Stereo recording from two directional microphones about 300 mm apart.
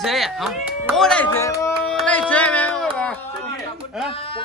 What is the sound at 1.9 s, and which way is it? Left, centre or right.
Music, centre.